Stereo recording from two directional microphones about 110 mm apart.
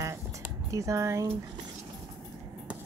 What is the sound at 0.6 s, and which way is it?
Speech, 30° right (ahead or behind).